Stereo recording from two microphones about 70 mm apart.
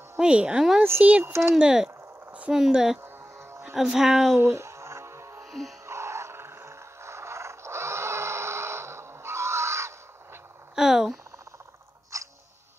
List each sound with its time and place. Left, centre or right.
0.2 s speech: centre
1.2 s speech: right
1.5 s speech: centre
4.4 s music: right
5.4 s music: centre
5.9 s a sound: right
10.8 s a sound: centre
12.1 s music: right